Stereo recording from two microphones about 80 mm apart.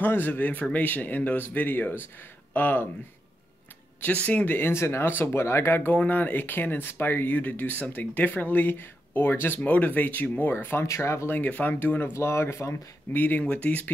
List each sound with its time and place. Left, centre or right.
0.0 s speech: left
4.0 s speech: centre; by 11.3 s left
11.3 s speech: centre
12.1 s speech: left
13.2 s speech: centre